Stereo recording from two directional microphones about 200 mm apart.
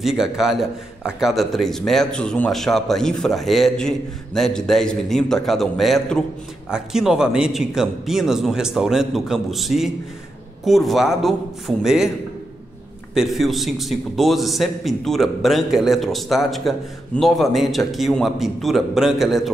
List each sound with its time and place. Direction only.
0.0 s a man's voice: centre (ahead or behind)
13.1 s a man's voice: centre (ahead or behind)